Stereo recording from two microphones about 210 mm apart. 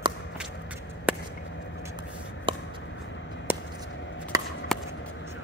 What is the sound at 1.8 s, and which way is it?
Vehicle, 20° right (ahead or behind).